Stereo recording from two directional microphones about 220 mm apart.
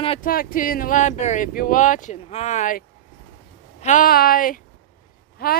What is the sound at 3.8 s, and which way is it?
Speech, 40° left (ahead or behind).